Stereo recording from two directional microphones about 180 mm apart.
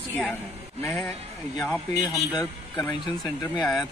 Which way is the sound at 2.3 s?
20° left (ahead or behind).